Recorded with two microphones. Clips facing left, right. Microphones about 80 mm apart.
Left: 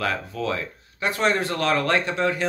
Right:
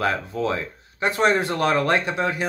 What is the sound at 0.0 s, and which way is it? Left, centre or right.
Speech, right.